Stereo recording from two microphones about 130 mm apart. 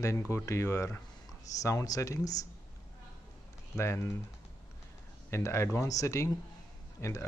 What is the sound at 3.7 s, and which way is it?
Speech, 20° left (ahead or behind).